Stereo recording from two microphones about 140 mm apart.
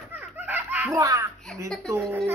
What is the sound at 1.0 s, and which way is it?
Speech, 25° right (ahead or behind).